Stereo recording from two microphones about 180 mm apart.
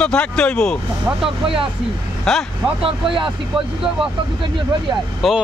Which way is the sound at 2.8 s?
30° right (ahead or behind).